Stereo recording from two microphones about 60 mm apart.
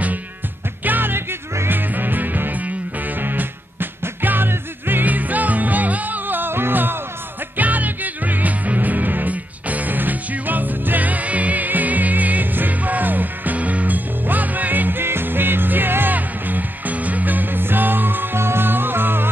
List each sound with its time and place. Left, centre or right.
0.8 s music: right